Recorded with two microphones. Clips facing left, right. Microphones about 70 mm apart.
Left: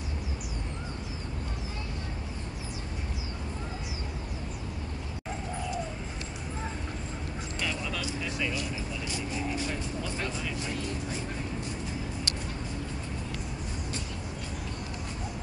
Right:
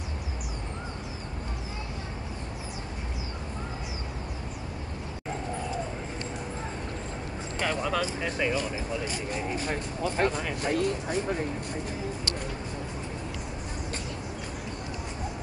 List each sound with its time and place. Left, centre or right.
7.6 s speech: right